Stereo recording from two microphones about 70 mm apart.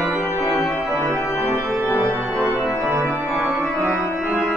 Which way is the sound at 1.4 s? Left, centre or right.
Right.